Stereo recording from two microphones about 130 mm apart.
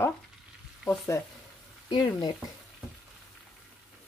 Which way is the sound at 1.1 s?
20° left (ahead or behind).